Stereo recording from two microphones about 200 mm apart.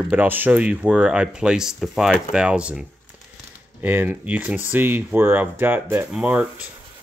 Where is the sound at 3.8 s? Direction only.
10° right (ahead or behind).